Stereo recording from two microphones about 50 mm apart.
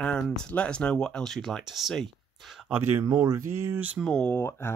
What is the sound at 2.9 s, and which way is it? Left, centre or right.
Speech, right.